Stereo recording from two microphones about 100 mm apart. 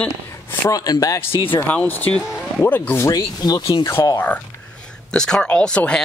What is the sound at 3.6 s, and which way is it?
Rub, 65° left (ahead or behind).